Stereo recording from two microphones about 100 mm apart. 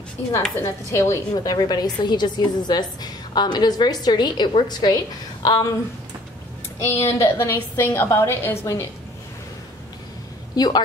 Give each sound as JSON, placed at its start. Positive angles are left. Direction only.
{"t": 0.6, "sound": "a woman's voice", "side_deg": 30}
{"t": 6.8, "sound": "a woman's voice", "side_deg": 25}
{"t": 10.5, "sound": "a woman's voice", "side_deg": 45}